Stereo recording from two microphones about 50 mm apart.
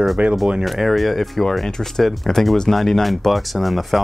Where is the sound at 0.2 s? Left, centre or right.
Right.